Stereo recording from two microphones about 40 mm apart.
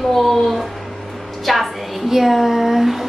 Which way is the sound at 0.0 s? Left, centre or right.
Centre.